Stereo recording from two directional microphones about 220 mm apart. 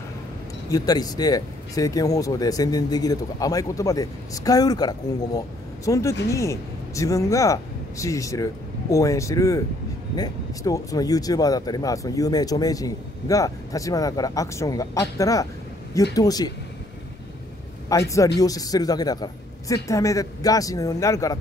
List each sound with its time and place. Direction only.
0.7 s speech: 15° left (ahead or behind)
17.8 s a man's voice: 15° left (ahead or behind)